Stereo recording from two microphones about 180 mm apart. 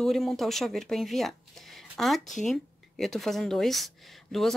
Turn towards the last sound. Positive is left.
turn(degrees=0)  # may be behind; listen again after turning